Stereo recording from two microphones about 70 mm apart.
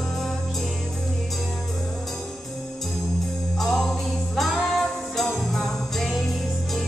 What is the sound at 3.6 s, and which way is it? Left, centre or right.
Music, centre.